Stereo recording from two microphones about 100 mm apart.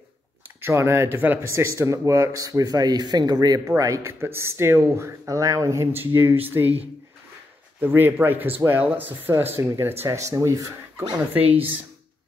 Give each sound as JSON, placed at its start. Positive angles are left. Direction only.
{"t": 0.6, "sound": "speech", "side_deg": -25}
{"t": 7.8, "sound": "speech", "side_deg": -20}